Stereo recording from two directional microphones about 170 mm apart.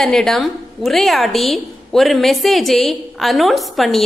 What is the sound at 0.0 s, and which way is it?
A woman's voice, centre (ahead or behind).